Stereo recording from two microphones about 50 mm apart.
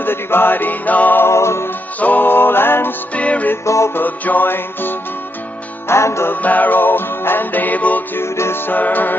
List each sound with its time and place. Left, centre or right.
0.0 s music: left
1.2 s music: left
2.0 s music: left
3.2 s music: left
3.6 s music: left
3.9 s music: left
5.9 s music: left
6.4 s music: left
8.2 s music: left